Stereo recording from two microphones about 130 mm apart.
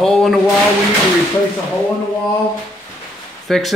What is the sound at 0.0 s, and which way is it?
Speech, centre (ahead or behind).